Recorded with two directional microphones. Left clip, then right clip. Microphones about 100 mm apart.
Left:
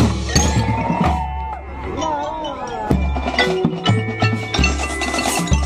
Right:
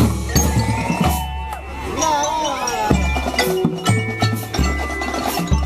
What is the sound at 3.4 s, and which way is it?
Music, 15° left (ahead or behind).